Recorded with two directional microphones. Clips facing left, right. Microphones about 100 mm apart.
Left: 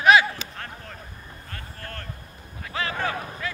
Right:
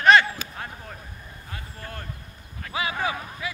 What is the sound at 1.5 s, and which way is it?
Vehicle, 10° right (ahead or behind).